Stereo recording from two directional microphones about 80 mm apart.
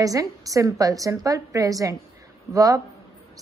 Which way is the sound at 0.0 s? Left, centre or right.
Right.